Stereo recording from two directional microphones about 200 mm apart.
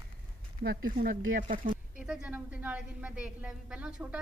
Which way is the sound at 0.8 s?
45° right (ahead or behind).